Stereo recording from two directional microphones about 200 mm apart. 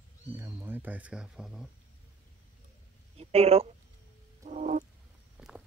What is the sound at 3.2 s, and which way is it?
Speech, 30° right (ahead or behind).